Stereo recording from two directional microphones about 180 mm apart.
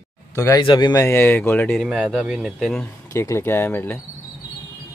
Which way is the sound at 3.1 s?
15° left (ahead or behind).